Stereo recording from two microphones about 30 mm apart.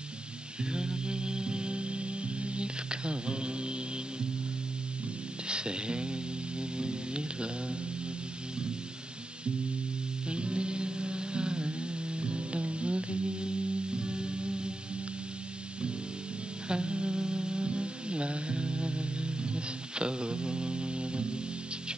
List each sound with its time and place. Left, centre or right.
0.7 s music: right
5.5 s a sound: right
6.8 s music: right
10.3 s music: right
16.6 s music: right